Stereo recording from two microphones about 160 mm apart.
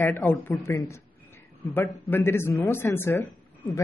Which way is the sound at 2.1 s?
15° left (ahead or behind).